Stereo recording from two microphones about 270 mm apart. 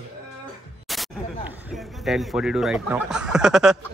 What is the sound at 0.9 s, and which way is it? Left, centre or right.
Speech, centre.